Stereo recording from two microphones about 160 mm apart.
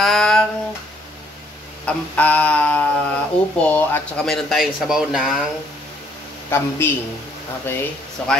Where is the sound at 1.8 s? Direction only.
10° left (ahead or behind).